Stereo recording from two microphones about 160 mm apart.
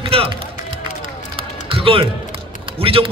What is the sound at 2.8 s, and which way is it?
Speech, 35° right (ahead or behind).